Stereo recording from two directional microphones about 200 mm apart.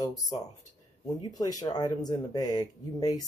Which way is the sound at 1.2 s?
20° left (ahead or behind).